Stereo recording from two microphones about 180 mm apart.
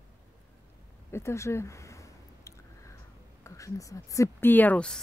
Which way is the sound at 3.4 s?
15° left (ahead or behind).